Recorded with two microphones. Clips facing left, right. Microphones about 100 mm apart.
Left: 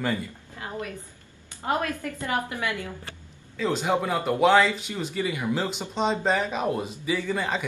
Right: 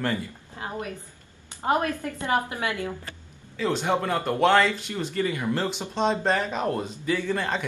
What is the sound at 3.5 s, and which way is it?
Speech, centre (ahead or behind).